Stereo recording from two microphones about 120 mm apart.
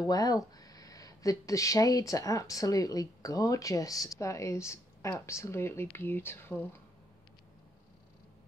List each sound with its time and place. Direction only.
0.1 s speech: 30° left (ahead or behind)